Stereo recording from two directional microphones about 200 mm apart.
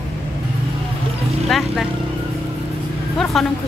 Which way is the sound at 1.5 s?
Centre (ahead or behind).